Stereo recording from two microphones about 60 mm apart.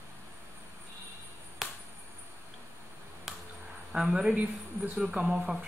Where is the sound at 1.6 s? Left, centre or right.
Centre.